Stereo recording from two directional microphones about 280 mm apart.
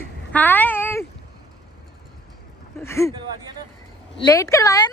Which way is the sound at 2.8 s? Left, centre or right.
Centre.